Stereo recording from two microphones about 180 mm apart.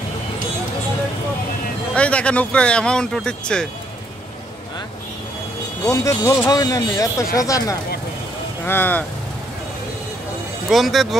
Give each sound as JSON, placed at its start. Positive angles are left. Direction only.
{"t": 2.0, "sound": "speech", "side_deg": 5}
{"t": 5.9, "sound": "speech", "side_deg": 15}
{"t": 10.7, "sound": "speech", "side_deg": 0}